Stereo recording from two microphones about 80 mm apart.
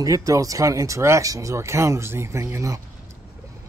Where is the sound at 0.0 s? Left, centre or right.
Right.